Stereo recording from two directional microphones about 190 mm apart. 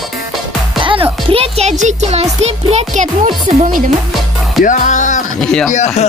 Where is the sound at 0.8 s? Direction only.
25° right (ahead or behind); by 3.8 s 40° right (ahead or behind).